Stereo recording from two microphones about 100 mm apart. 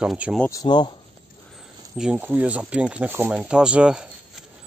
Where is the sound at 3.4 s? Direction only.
10° right (ahead or behind).